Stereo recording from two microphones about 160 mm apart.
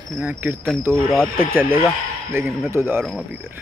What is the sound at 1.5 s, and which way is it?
Speech, 15° right (ahead or behind).